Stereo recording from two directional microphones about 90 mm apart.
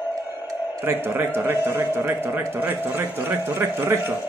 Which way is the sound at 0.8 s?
25° right (ahead or behind).